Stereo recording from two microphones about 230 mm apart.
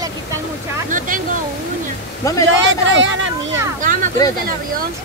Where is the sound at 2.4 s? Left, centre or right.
Right.